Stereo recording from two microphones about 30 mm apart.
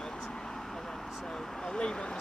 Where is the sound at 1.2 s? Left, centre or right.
Left.